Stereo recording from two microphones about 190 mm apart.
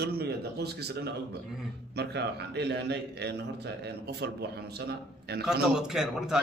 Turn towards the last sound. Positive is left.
turn(degrees=-5)  # may be behind; listen again after turning